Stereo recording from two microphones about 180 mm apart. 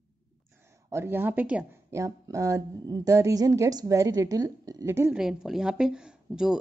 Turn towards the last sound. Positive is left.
turn(degrees=-5)  # may be behind; listen again after turning